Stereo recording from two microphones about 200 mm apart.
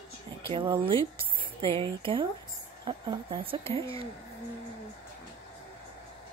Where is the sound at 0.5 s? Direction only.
25° right (ahead or behind).